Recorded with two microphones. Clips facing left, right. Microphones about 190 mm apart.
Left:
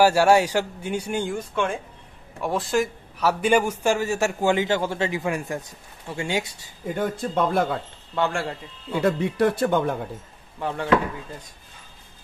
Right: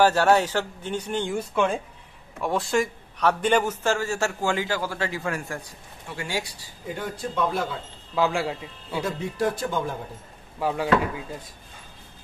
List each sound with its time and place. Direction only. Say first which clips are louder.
0.0 s a man's voice: left 2 dB; 10° left (ahead or behind)
2.4 s a man's voice: left 1 dB; centre (ahead or behind); by 6.7 s 20° left (ahead or behind)
7.0 s speech: left 4 dB; 55° left (ahead or behind)
8.1 s a man's voice: right 1 dB; centre (ahead or behind)
9.0 s speech: left 6 dB; 65° left (ahead or behind)
10.6 s speech: right 2 dB; 10° right (ahead or behind)